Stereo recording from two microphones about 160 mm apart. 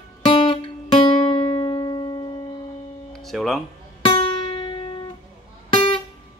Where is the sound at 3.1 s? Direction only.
Centre (ahead or behind).